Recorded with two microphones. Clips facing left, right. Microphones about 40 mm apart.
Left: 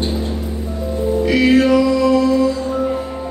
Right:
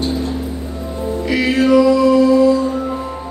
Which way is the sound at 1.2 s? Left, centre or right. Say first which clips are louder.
Left 2 dB; centre.